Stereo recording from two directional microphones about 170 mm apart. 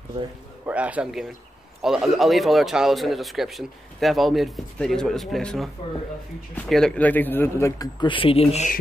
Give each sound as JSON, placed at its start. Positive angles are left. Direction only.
{"t": 0.7, "sound": "a man's voice", "side_deg": -10}